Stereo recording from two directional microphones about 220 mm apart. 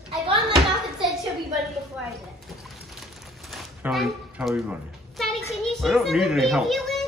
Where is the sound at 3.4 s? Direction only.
Centre (ahead or behind).